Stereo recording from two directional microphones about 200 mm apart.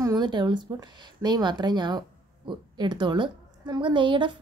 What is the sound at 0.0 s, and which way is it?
Speech, 20° right (ahead or behind).